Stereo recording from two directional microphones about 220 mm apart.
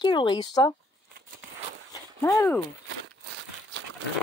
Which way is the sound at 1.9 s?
15° left (ahead or behind).